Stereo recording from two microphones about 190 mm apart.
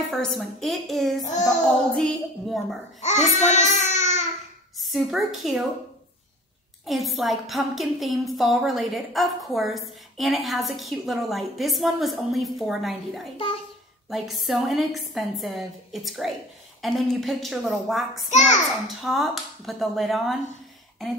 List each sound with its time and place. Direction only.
0.1 s a woman's voice: centre (ahead or behind)
3.0 s child singing: 35° left (ahead or behind)
4.7 s a woman's voice: centre (ahead or behind)
6.9 s a woman's voice: centre (ahead or behind)